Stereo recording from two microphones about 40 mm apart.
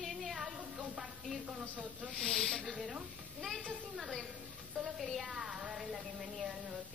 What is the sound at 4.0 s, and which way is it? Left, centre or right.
A woman's voice, centre.